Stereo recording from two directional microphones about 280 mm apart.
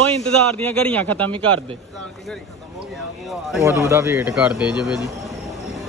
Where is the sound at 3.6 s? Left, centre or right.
Centre.